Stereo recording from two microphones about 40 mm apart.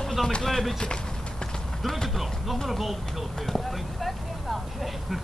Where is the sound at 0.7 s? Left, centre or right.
Centre.